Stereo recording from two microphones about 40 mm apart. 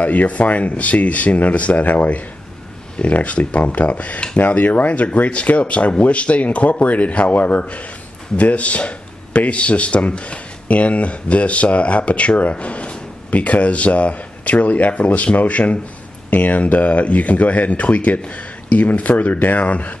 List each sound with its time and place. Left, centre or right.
0.0 s speech: left